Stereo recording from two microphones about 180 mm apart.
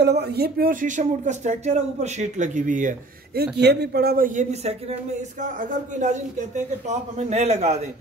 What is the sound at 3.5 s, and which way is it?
A man's voice, 65° right (ahead or behind).